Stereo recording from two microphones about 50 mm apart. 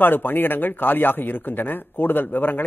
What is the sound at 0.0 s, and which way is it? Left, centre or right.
A man's voice, left.